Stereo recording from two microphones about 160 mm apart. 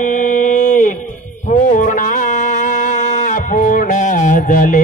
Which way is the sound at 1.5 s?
55° left (ahead or behind).